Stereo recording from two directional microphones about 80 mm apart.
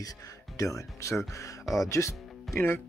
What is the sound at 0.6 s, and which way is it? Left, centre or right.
Speech, left.